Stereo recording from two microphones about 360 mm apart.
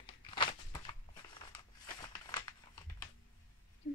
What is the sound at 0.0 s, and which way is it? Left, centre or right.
Crumpling, centre.